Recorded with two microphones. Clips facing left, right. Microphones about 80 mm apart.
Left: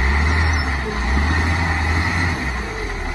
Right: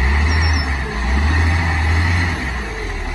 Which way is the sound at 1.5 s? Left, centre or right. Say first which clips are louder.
Even; centre.